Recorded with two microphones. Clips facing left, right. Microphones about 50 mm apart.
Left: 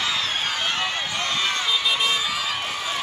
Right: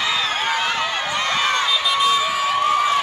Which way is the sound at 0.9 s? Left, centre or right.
Right.